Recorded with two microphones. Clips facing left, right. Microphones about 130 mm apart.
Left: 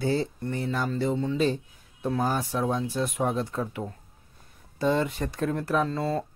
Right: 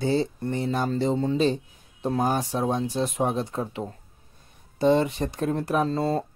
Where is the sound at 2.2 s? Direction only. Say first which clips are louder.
Right 2 dB; 20° right (ahead or behind).